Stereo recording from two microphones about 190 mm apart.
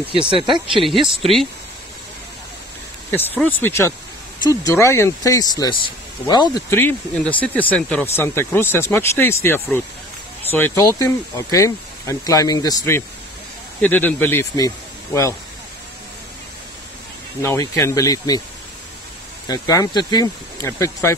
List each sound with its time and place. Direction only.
0.1 s speech: 25° right (ahead or behind)
0.8 s speech: centre (ahead or behind)
3.1 s speech: 10° left (ahead or behind)
6.7 s speech: 10° left (ahead or behind)
17.4 s speech: 15° left (ahead or behind)
19.4 s speech: 20° left (ahead or behind)